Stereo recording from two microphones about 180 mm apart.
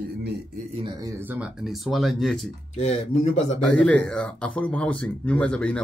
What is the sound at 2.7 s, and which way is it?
Speech, 35° left (ahead or behind).